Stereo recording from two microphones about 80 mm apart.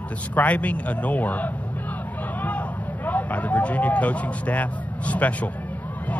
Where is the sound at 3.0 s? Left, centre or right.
Centre.